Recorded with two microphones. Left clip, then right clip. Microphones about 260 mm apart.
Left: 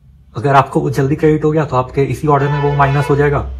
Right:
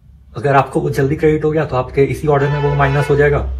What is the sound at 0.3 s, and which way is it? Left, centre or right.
Speech, left.